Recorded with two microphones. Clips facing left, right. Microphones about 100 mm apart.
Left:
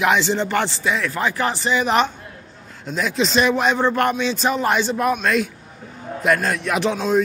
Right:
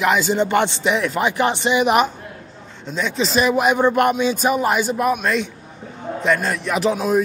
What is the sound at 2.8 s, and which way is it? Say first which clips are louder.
A man's voice: left 1 dB; centre (ahead or behind).